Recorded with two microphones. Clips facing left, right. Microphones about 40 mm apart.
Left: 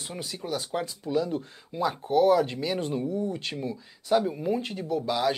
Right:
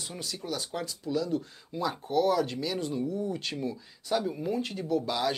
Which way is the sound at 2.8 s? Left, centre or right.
Left.